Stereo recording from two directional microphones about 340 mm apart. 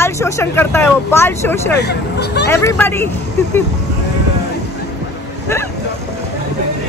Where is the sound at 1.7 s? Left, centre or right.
Left.